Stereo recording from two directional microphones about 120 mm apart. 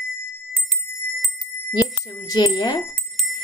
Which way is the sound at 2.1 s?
35° left (ahead or behind).